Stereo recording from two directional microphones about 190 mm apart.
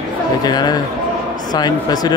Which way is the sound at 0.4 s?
20° left (ahead or behind).